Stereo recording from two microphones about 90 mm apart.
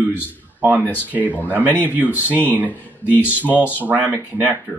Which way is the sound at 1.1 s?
20° right (ahead or behind).